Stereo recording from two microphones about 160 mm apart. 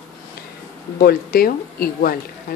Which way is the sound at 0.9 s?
70° left (ahead or behind).